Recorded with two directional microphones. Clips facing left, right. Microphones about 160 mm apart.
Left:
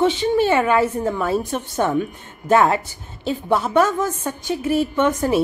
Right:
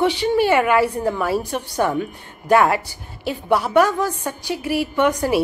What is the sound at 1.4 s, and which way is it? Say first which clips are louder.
Speech: even; 20° left (ahead or behind).